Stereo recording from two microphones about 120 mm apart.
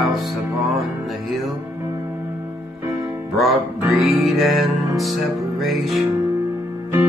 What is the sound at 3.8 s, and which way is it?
Music, centre (ahead or behind).